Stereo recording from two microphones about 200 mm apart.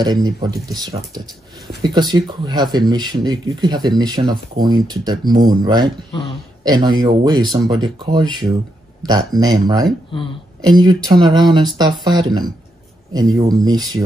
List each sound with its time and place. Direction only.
0.0 s speech: 20° right (ahead or behind)
1.8 s speech: 20° right (ahead or behind)